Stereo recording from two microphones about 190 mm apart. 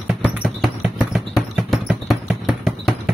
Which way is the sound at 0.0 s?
5° right (ahead or behind).